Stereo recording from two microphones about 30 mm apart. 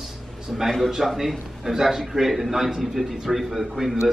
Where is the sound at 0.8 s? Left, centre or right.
Centre.